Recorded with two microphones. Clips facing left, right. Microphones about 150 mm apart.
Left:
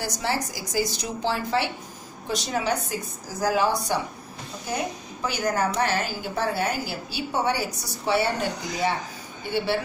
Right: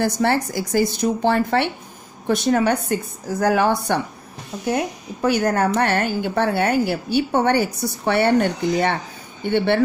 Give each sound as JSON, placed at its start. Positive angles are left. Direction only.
{"t": 0.0, "sound": "a woman's voice", "side_deg": -55}